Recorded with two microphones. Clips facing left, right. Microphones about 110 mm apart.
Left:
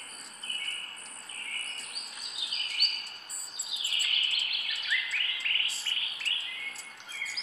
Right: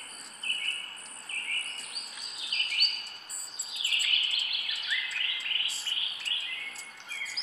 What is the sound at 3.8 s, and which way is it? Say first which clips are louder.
Bird: right 1 dB; centre (ahead or behind).